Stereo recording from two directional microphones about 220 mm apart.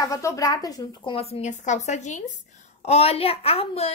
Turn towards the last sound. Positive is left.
turn(degrees=25)  # may be behind; listen again after turning